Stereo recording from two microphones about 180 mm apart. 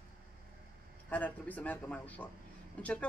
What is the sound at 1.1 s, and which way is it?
Speech, 10° left (ahead or behind).